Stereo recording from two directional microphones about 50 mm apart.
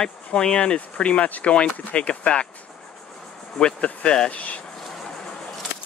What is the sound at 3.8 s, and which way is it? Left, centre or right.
Speech, left.